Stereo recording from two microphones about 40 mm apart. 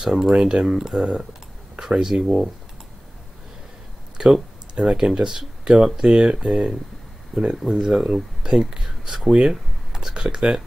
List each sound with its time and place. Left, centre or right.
0.0 s speech: centre
4.2 s a sound: centre
5.0 s speech: right
7.8 s speech: centre
9.3 s speech: right
9.9 s speech: centre